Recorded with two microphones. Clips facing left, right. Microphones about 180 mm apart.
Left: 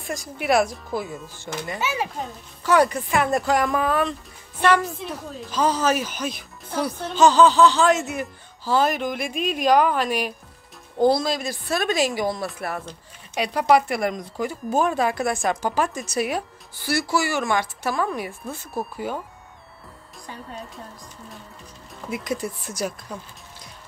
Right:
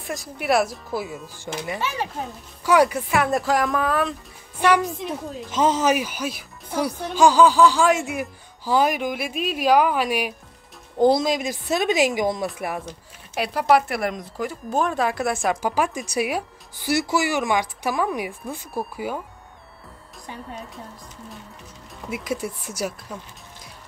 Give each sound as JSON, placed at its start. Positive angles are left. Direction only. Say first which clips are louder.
{"t": 0.0, "sound": "speech", "louder": "even", "side_deg": 0}
{"t": 22.1, "sound": "speech", "louder": "even", "side_deg": -5}